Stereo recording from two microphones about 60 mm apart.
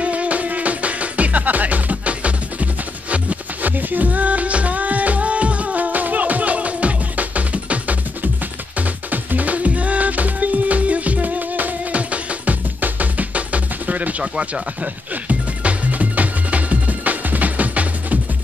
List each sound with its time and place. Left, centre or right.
0.0 s music: right